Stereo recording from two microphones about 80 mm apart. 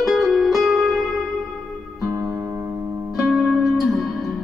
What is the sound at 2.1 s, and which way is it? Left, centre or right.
Music, right.